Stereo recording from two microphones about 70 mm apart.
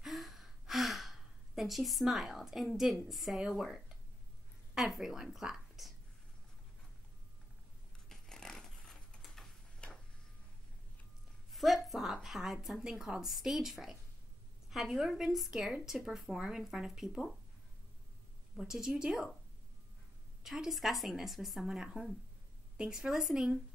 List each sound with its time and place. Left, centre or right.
0.0 s gasp: centre
3.4 s a woman's voice: centre
8.1 s a sound: centre
9.8 s a sound: centre
11.5 s a woman's voice: centre
18.6 s a woman's voice: centre
20.4 s a woman's voice: centre